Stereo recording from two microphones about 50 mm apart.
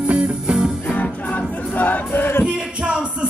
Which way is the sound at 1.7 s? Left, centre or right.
Left.